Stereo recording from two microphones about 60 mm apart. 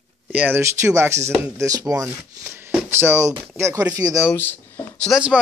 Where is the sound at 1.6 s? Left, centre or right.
Right.